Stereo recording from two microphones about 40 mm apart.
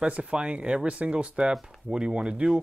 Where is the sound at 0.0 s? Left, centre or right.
Right.